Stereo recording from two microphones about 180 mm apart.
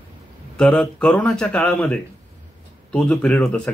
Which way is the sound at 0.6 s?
5° left (ahead or behind).